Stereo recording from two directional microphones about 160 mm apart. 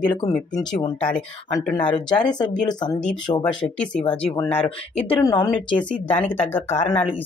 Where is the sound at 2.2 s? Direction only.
25° left (ahead or behind).